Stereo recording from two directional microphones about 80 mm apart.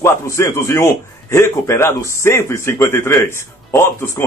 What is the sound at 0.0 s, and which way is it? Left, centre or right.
A man's voice, left.